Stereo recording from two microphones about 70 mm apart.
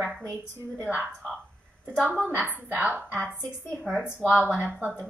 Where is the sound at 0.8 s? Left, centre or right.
Right.